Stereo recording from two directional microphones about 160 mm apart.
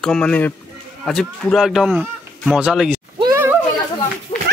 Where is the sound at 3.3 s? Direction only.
15° right (ahead or behind).